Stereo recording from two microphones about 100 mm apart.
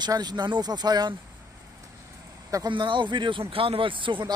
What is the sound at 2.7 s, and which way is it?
Speech, 55° right (ahead or behind).